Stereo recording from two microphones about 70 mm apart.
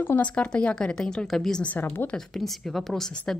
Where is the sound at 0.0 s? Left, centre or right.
Left; by 1.6 s centre.